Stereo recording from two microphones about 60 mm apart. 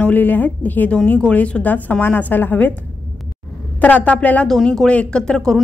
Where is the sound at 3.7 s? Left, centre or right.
Left.